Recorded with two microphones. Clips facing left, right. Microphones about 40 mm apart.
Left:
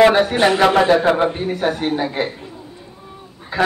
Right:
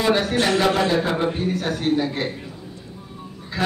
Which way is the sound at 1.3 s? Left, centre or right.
Centre.